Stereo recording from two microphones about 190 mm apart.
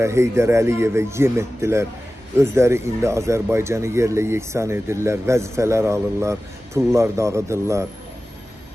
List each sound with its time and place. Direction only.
0.0 s speech: 15° right (ahead or behind)